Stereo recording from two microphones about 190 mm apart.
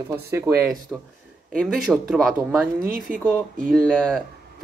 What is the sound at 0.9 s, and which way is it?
Speech, 5° right (ahead or behind).